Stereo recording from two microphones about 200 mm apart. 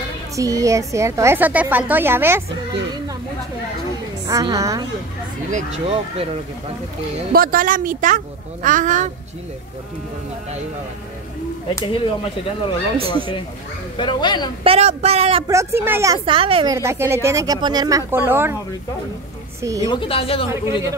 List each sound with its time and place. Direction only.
0.4 s a woman's voice: 15° right (ahead or behind)
4.3 s a woman's voice: 15° right (ahead or behind)
5.5 s speech: 30° right (ahead or behind)
7.3 s speech: 45° right (ahead or behind)
11.7 s speech: 25° left (ahead or behind)
13.9 s speech: 25° left (ahead or behind)
14.6 s speech: 30° right (ahead or behind)
15.4 s a woman's voice: 15° right (ahead or behind)
16.7 s a woman's voice: 15° right (ahead or behind)
19.6 s a woman's voice: 15° right (ahead or behind)
19.9 s speech: 25° left (ahead or behind)
20.4 s a woman's voice: 15° right (ahead or behind)